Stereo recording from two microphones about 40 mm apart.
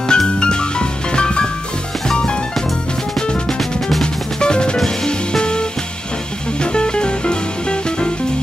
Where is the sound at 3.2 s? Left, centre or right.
Left.